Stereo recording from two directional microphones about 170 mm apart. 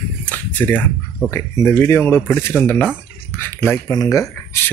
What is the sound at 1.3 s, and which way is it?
Speech, 15° left (ahead or behind).